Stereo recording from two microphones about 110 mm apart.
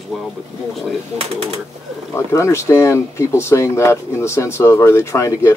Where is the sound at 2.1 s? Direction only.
25° left (ahead or behind).